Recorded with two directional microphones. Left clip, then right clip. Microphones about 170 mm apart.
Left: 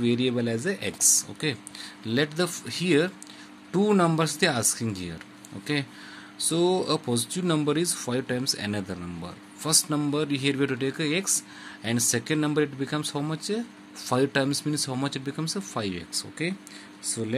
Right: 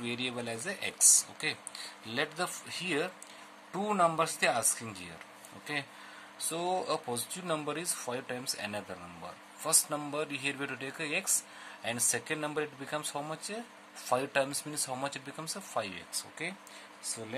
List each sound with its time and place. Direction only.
0.0 s speech: 15° left (ahead or behind)